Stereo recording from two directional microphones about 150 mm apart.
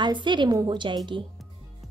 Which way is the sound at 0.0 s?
30° right (ahead or behind).